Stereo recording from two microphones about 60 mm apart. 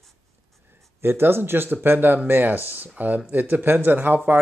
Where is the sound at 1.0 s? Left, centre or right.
Right.